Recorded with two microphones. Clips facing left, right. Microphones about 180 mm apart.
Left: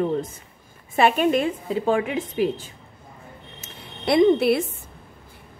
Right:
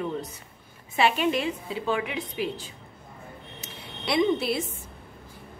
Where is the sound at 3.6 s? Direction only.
50° left (ahead or behind).